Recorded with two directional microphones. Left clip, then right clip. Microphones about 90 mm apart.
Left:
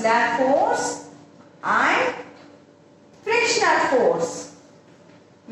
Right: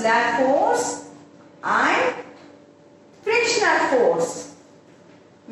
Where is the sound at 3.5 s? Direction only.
35° left (ahead or behind).